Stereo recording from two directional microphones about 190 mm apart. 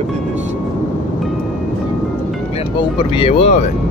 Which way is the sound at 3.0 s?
30° left (ahead or behind).